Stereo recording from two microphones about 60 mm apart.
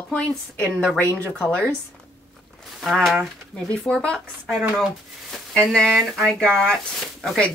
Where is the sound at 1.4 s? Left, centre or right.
Centre.